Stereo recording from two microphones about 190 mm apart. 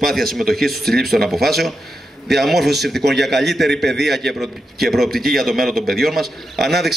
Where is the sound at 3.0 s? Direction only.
60° right (ahead or behind).